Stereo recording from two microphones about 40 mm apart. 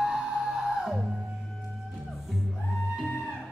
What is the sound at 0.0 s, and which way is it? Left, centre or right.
Music, centre.